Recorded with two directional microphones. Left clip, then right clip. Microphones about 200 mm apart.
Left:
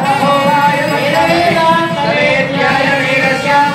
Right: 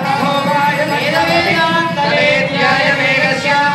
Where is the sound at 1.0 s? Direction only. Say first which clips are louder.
Left 3 dB; 15° right (ahead or behind).